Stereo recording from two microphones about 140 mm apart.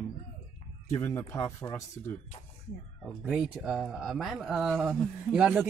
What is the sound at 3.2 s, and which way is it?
Speech, 10° right (ahead or behind).